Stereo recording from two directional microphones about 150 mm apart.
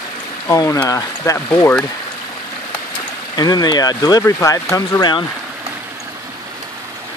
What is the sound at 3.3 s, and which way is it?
Speech, 25° left (ahead or behind).